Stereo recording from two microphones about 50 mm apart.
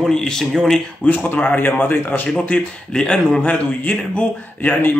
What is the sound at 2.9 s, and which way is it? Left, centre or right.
Speech, centre.